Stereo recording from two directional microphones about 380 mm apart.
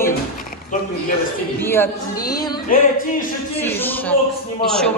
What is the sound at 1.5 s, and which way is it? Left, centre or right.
A woman's voice, centre.